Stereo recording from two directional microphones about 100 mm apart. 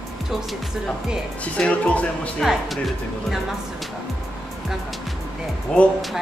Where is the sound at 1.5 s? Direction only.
10° left (ahead or behind).